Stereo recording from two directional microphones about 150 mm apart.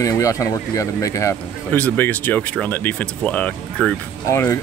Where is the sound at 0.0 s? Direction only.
20° left (ahead or behind).